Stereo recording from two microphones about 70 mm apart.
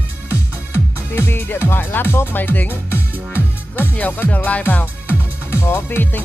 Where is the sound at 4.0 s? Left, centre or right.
Left.